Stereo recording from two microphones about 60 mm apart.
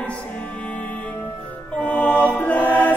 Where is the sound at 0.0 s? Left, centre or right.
Left.